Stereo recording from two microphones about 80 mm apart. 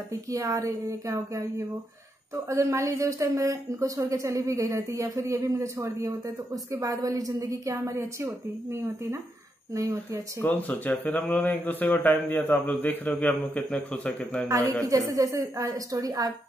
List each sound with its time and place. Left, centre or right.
0.3 s a woman's voice: right
10.4 s speech: left
14.5 s a woman's voice: right